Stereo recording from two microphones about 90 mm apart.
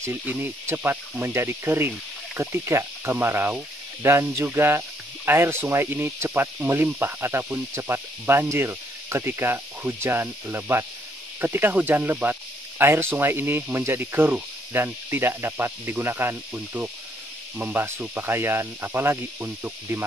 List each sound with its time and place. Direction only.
0.3 s speech: 25° right (ahead or behind)